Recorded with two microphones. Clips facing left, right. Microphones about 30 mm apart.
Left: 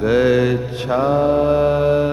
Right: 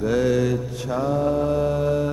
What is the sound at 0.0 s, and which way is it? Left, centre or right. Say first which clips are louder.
Mantra: left 6 dB; left.